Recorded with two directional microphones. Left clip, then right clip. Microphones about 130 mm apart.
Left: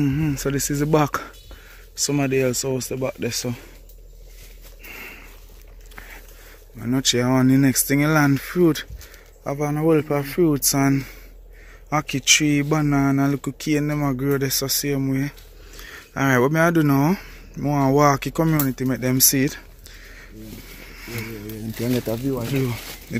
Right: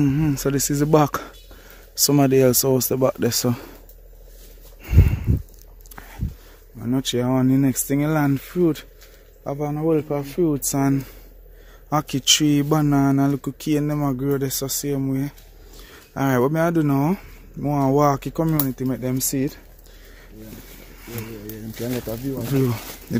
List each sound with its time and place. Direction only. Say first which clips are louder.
0.0 s speech: right 2 dB; 40° right (ahead or behind)
2.0 s speech: right 4 dB; 45° right (ahead or behind); by 3.7 s 85° right
4.8 s a sound: right 8 dB; 45° right (ahead or behind)
5.9 s boat: left 1 dB; 40° right (ahead or behind)
6.8 s speech: left 2 dB; 15° right (ahead or behind); by 8.8 s 5° left (ahead or behind)
9.4 s speech: left 1 dB; 5° right (ahead or behind)
9.8 s speech: left 2 dB; 5° left (ahead or behind)
10.7 s speech: left 1 dB; 15° right (ahead or behind)
11.9 s speech: left 1 dB; 35° right (ahead or behind); by 19.6 s centre (ahead or behind)